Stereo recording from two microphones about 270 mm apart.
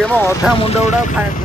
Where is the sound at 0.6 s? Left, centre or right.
Left.